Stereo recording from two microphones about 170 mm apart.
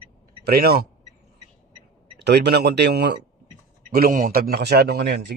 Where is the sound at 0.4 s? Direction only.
65° right (ahead or behind).